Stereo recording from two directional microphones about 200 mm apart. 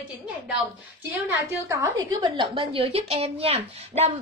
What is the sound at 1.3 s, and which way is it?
A woman's voice, 15° right (ahead or behind).